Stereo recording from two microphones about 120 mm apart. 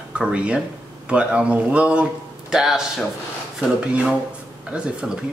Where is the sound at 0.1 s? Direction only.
10° right (ahead or behind).